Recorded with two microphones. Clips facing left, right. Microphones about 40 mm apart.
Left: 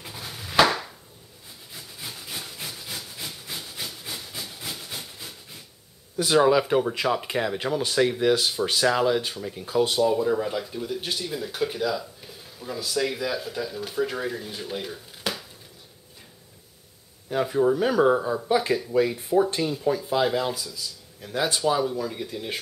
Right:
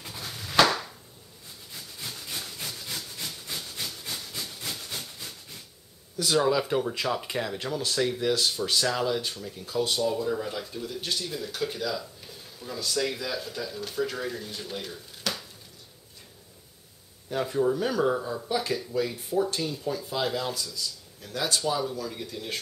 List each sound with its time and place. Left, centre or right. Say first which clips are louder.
0.0 s a sound: left 1 dB; centre
1.7 s wood: left 1 dB; centre
6.1 s speech: left 5 dB; left
17.3 s speech: left 4 dB; centre